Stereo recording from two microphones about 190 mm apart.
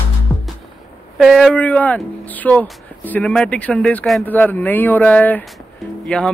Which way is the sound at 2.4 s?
Centre (ahead or behind).